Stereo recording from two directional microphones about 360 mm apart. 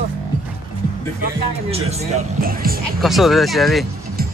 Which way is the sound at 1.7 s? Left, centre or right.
Centre.